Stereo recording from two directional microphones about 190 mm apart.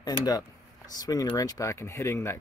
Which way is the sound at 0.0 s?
20° left (ahead or behind).